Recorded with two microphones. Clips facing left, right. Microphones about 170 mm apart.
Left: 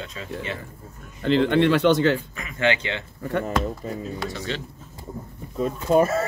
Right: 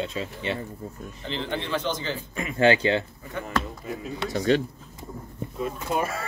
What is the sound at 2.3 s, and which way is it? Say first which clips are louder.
Speech: right 3 dB; 30° right (ahead or behind).